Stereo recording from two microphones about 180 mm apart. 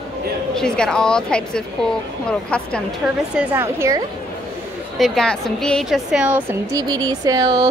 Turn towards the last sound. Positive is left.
turn(degrees=-20)  # may be behind; listen again after turning